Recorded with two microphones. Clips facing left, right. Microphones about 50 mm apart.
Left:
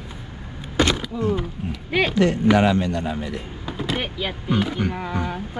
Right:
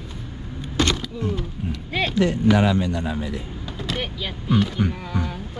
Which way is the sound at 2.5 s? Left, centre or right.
Left.